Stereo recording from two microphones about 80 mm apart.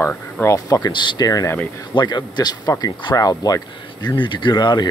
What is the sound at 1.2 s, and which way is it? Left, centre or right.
Speech, left.